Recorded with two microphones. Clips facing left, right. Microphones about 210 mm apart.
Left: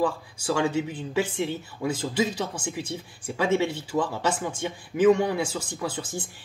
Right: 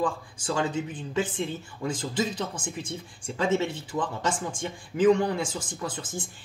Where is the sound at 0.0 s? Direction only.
10° left (ahead or behind).